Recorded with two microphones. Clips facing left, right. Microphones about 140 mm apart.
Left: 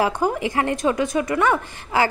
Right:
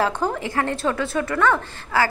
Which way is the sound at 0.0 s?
10° left (ahead or behind).